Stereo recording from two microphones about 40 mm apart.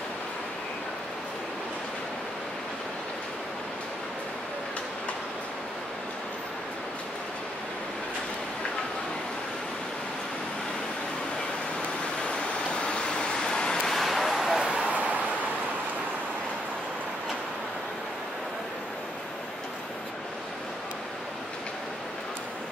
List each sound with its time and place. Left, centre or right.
12.8 s waves: left
13.9 s vehicle: centre
14.9 s a sound: right